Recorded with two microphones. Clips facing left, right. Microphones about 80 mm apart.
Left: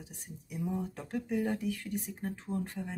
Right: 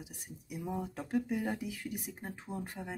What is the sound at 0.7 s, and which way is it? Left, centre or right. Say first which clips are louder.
Speech: right 2 dB; centre.